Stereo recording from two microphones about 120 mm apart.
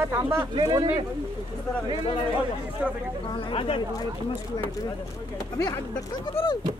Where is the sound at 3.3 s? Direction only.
45° left (ahead or behind).